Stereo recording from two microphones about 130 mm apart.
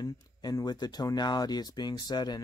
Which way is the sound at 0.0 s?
30° left (ahead or behind).